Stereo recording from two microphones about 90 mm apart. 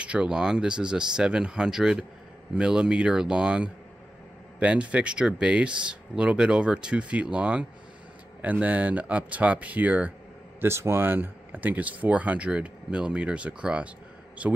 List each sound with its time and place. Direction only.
0.0 s speech: 15° right (ahead or behind)
10.6 s speech: 30° right (ahead or behind)